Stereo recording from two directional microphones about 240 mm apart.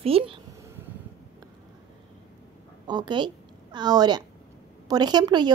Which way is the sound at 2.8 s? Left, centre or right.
Centre.